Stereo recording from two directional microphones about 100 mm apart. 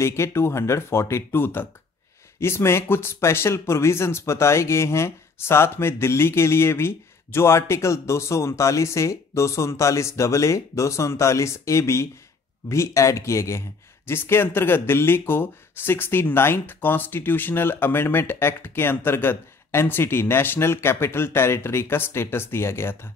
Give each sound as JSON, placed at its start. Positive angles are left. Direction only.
{"t": 0.0, "sound": "speech", "side_deg": 25}